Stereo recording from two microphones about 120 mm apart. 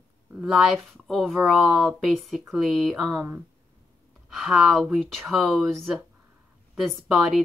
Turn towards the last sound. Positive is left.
turn(degrees=0)  # may be behind; listen again after turning